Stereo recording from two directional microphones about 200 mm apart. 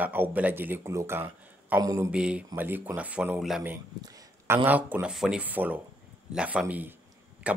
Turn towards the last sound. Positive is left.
turn(degrees=-5)  # may be behind; listen again after turning